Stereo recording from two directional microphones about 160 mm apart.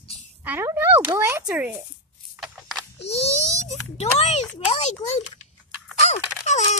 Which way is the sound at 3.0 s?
40° left (ahead or behind).